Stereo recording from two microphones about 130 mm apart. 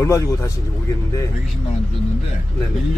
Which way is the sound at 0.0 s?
25° left (ahead or behind).